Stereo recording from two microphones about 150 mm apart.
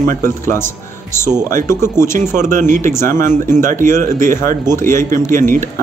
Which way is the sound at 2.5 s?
60° right (ahead or behind).